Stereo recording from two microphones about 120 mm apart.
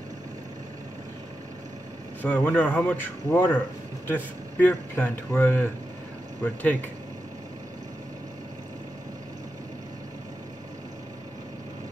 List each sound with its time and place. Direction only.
2.2 s speech: 10° left (ahead or behind)